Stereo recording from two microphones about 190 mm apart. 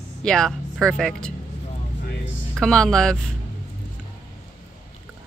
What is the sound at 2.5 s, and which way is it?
Speech, 5° left (ahead or behind).